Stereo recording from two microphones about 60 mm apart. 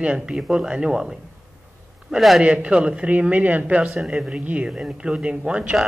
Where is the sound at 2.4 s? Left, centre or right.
Centre.